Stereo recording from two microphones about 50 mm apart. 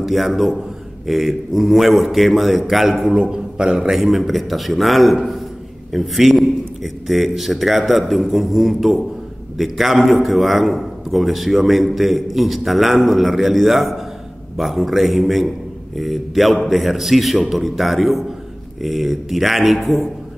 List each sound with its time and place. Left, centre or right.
0.0 s a man's voice: centre
3.2 s a man's voice: centre
3.9 s a man's voice: centre